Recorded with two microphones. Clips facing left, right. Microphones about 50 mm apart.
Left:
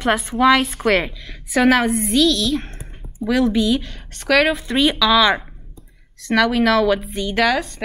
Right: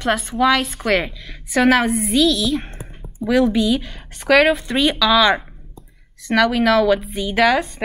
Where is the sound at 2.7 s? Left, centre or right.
Centre.